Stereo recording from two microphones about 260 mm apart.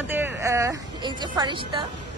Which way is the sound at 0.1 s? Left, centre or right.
Centre.